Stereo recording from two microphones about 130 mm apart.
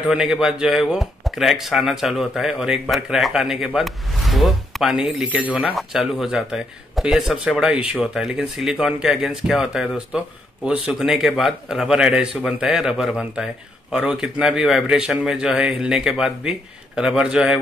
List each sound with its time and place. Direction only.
0.1 s speech: 5° right (ahead or behind)